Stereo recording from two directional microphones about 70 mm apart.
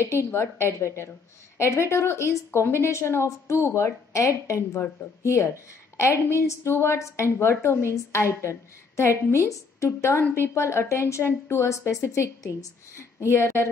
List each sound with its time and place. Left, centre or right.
0.0 s a woman's voice: left